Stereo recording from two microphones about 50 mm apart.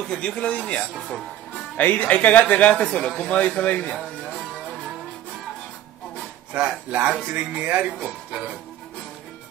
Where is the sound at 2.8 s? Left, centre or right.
Centre.